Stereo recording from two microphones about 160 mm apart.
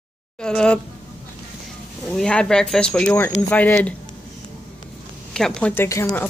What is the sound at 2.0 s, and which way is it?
Speech, 5° left (ahead or behind).